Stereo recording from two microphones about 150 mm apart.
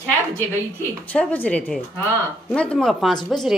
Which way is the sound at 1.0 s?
10° left (ahead or behind).